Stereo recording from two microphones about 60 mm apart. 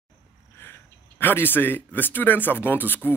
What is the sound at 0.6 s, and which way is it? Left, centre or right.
A man's voice, left.